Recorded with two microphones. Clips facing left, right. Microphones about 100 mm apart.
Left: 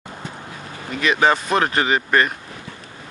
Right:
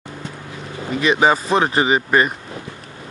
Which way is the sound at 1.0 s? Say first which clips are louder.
Right 2 dB; 5° right (ahead or behind).